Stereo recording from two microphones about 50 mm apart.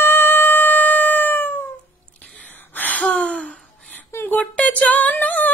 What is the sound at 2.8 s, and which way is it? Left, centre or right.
Gasp, left.